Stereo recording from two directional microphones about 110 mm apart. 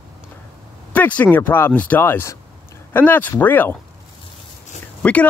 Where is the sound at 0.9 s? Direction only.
15° left (ahead or behind).